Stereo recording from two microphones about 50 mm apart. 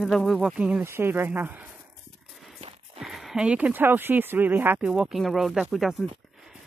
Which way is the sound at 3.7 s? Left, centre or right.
Right.